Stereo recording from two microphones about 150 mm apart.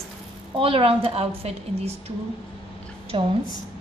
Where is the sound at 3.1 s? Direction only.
35° right (ahead or behind).